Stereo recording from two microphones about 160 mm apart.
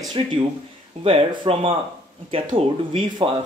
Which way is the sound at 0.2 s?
40° right (ahead or behind).